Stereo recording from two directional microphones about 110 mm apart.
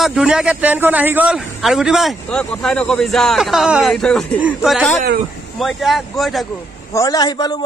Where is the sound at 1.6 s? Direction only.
Centre (ahead or behind).